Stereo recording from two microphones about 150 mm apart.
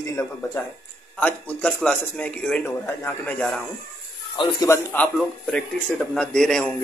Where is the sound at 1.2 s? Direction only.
10° left (ahead or behind).